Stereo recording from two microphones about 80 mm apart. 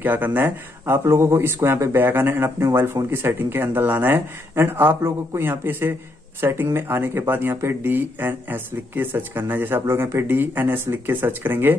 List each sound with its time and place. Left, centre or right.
0.0 s speech: right